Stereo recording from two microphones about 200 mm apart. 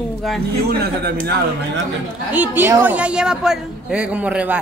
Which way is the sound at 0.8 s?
50° right (ahead or behind).